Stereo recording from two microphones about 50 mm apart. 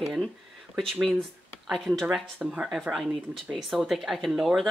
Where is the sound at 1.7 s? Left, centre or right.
Centre.